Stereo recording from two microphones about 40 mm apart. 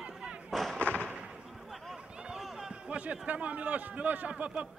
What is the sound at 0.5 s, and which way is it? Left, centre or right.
Speech, centre.